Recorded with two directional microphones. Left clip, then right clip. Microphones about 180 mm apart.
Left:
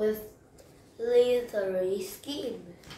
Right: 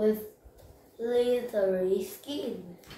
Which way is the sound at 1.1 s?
15° left (ahead or behind).